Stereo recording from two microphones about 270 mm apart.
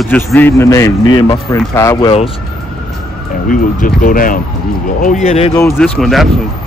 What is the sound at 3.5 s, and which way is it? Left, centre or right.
Speech, left.